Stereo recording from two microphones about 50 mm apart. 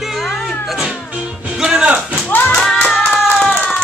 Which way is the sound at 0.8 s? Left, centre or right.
Centre.